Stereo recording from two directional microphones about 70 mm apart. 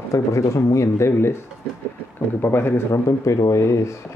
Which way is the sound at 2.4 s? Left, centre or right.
Left.